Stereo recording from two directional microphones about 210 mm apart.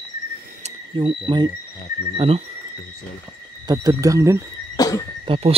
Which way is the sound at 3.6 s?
15° right (ahead or behind).